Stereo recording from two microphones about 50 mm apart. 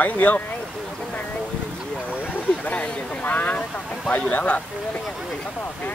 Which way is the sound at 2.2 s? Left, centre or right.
Left.